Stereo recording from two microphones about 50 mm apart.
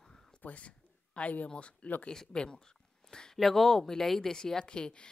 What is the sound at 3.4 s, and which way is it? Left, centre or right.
Speech, centre.